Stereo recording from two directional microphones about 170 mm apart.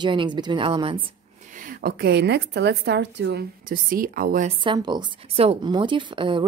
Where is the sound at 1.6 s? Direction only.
65° right (ahead or behind).